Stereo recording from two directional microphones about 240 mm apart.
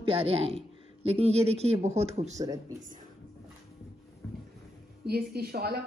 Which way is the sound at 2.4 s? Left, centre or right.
Centre.